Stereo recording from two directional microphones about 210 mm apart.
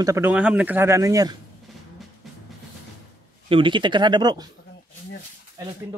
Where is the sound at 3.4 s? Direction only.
25° right (ahead or behind).